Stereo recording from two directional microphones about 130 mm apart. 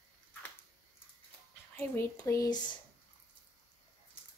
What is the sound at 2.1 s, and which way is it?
Speech, 25° left (ahead or behind).